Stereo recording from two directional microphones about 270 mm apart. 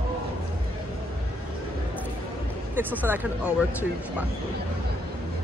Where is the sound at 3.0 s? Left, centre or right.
Centre.